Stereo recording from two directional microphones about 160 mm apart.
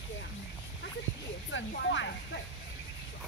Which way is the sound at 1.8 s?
90° left.